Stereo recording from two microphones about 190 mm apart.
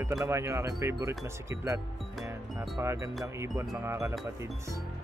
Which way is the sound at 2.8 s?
15° right (ahead or behind).